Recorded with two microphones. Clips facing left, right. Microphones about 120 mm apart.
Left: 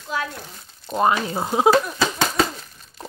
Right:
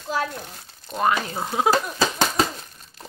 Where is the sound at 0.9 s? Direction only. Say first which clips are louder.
Left 3 dB; 25° left (ahead or behind).